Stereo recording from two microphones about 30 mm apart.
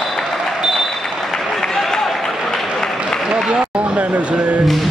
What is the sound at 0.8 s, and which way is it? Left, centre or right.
Applause, centre.